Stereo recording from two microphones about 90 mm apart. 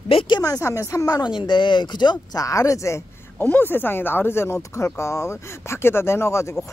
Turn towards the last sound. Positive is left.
turn(degrees=30)  # may be behind; listen again after turning